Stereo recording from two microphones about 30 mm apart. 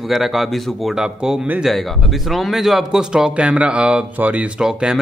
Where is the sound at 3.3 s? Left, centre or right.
Right.